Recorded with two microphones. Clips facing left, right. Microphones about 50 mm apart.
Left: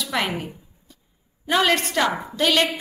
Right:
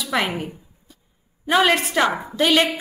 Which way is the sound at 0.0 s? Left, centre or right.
Centre.